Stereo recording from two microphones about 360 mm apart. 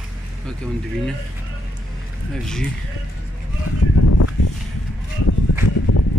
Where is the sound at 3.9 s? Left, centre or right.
Left.